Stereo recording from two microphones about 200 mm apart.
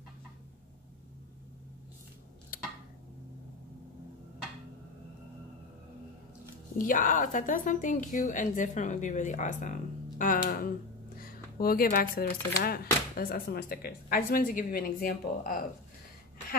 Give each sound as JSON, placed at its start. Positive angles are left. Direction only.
{"t": 6.8, "sound": "a woman's voice", "side_deg": 40}